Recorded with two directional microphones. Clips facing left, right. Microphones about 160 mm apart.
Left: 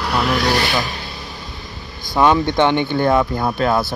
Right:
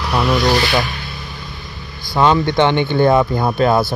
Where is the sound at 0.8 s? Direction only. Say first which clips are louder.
Right 3 dB; 35° left (ahead or behind).